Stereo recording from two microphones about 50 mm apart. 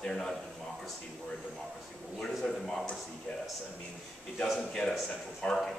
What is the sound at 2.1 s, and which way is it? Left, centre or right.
Speech, centre.